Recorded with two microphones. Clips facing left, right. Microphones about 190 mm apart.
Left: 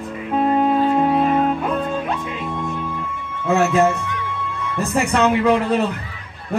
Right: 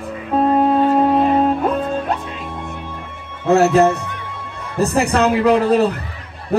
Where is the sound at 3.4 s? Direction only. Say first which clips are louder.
Right 4 dB; 40° right (ahead or behind).